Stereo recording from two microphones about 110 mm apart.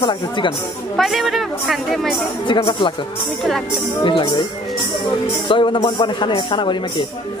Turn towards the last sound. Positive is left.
turn(degrees=45)  # may be behind; listen again after turning